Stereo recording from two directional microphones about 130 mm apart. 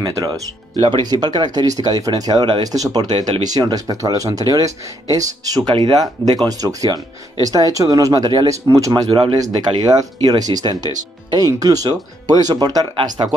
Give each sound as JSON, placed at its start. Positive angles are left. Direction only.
{"t": 0.0, "sound": "speech", "side_deg": -35}
{"t": 8.9, "sound": "speech", "side_deg": -40}